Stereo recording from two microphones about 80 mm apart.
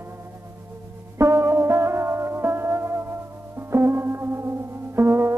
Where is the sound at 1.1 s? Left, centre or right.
Right.